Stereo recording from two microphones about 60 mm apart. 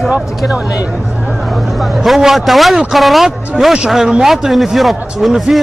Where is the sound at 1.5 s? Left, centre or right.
Centre.